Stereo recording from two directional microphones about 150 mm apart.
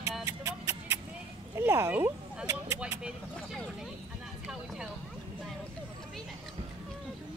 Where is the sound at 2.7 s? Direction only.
5° right (ahead or behind).